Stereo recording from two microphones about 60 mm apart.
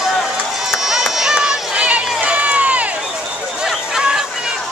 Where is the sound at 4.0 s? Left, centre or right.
Centre.